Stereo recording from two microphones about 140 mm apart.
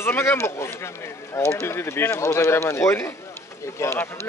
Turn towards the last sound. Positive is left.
turn(degrees=20)  # may be behind; listen again after turning